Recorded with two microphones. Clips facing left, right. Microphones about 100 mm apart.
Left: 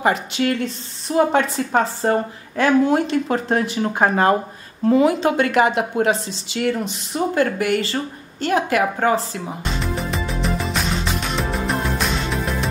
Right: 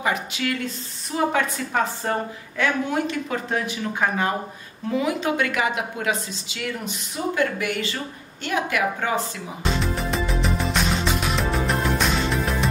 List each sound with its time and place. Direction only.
0.0 s speech: 40° left (ahead or behind)
9.9 s music: centre (ahead or behind)